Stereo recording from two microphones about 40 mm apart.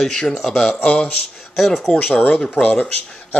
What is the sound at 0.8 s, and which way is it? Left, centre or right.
Speech, left.